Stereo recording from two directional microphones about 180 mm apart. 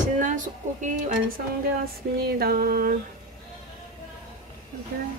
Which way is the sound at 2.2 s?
60° right (ahead or behind).